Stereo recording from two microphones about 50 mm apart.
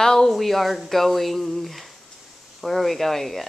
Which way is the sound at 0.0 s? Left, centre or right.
Centre.